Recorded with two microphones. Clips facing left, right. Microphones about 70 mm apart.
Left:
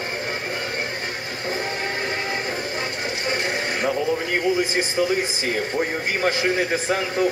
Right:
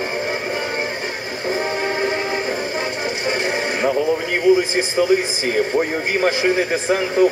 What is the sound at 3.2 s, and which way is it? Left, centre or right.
Music, right.